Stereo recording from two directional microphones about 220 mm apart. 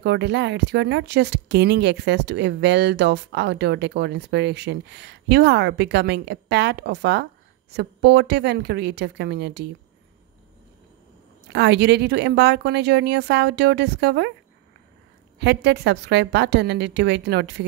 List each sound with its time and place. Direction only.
0.0 s speech: 50° right (ahead or behind)
11.4 s speech: 50° right (ahead or behind)
15.3 s speech: 50° right (ahead or behind)